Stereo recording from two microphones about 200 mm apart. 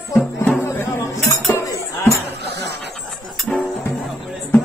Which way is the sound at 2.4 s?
55° right (ahead or behind).